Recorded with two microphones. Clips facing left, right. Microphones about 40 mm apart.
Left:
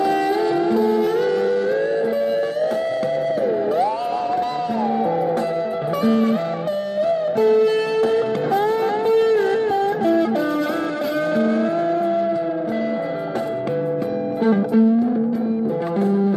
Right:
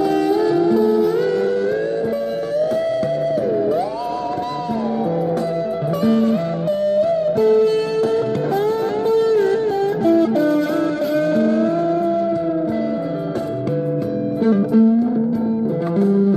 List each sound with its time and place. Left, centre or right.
2.1 s music: left
6.0 s music: left
9.1 s music: left
11.3 s vehicle: left
14.4 s music: left
16.0 s music: left